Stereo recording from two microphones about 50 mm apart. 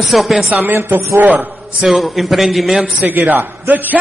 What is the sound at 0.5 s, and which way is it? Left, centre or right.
A woman's voice, right.